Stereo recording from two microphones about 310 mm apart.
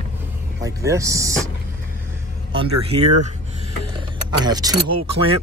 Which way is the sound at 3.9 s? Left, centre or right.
Centre.